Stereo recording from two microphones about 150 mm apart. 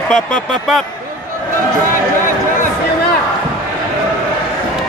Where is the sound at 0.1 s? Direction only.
5° left (ahead or behind).